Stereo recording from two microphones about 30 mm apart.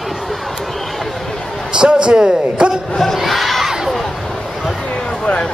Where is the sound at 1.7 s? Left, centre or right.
Right.